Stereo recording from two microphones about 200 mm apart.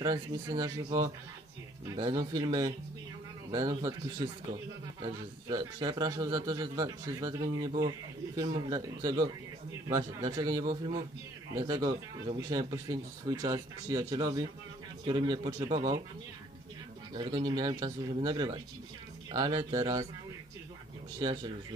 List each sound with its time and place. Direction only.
0.0 s speech: 20° right (ahead or behind)
2.0 s speech: 20° right (ahead or behind)
5.0 s speech: 20° right (ahead or behind)
17.1 s speech: 20° right (ahead or behind)
21.2 s speech: 25° right (ahead or behind)